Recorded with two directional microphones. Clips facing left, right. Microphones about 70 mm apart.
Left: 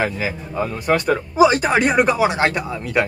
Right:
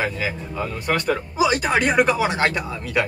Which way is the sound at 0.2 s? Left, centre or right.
Left.